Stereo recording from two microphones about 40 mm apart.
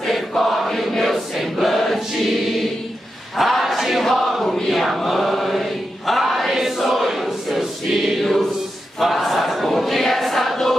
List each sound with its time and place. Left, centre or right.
0.4 s chant: centre
0.9 s choir: centre
4.0 s chant: centre
7.1 s choir: centre